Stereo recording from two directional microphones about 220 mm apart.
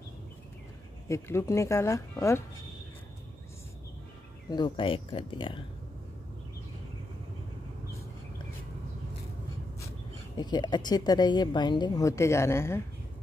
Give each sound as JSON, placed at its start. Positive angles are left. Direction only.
{"t": 1.0, "sound": "a woman's voice", "side_deg": 10}
{"t": 4.5, "sound": "speech", "side_deg": 20}
{"t": 10.3, "sound": "a woman's voice", "side_deg": 20}